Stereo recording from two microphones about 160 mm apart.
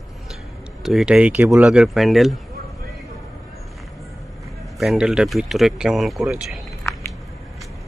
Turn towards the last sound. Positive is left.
turn(degrees=0)  # may be behind; listen again after turning